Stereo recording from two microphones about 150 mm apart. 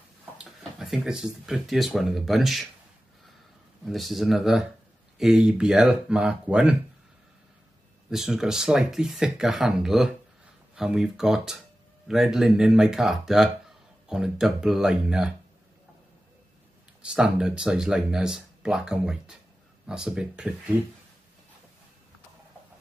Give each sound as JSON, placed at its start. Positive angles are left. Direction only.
{"t": 0.4, "sound": "speech", "side_deg": -5}
{"t": 3.8, "sound": "speech", "side_deg": 0}
{"t": 8.1, "sound": "speech", "side_deg": -5}
{"t": 17.0, "sound": "speech", "side_deg": -5}